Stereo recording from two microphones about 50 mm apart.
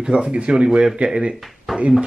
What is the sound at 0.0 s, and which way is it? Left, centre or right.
Speech, right.